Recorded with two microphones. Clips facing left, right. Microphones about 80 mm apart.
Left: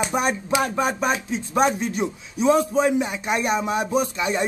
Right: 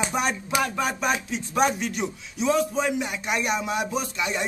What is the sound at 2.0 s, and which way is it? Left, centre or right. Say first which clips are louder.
Speech: left 5 dB; left.